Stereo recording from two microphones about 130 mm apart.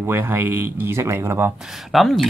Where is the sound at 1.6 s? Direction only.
Centre (ahead or behind).